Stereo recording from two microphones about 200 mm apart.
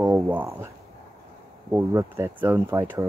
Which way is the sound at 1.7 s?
15° right (ahead or behind).